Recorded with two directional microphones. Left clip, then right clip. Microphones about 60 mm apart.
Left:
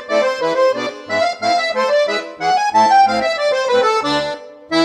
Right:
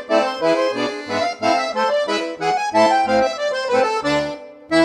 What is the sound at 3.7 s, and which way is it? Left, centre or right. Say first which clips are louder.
Accordion: even; right.